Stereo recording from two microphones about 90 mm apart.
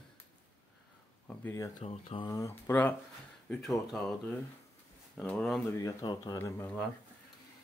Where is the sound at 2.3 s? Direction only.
35° left (ahead or behind).